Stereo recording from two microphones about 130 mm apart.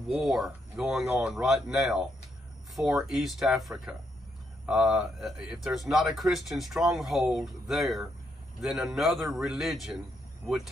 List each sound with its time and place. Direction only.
0.1 s speech: centre (ahead or behind)